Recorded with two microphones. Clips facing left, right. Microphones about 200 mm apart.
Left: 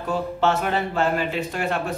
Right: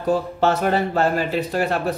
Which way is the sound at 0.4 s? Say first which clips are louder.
Even; 40° right (ahead or behind).